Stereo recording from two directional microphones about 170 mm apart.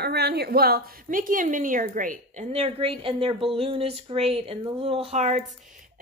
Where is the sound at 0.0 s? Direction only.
70° right (ahead or behind); by 2.4 s 50° right (ahead or behind).